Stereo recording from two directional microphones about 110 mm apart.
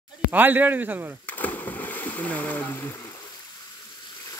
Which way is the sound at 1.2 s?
15° left (ahead or behind).